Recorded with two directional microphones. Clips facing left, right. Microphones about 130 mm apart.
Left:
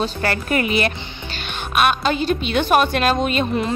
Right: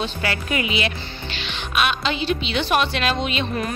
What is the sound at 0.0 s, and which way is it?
A woman's voice, 45° left (ahead or behind).